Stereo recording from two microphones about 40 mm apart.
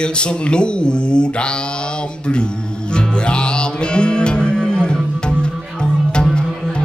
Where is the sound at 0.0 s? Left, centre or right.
Left.